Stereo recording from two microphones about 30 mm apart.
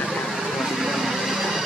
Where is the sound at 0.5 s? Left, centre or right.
Centre.